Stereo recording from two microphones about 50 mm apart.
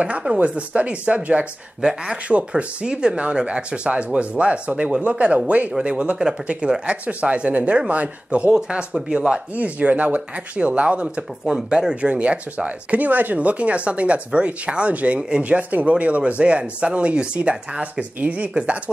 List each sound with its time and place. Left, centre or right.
0.0 s speech: right
1.8 s speech: centre
9.5 s speech: right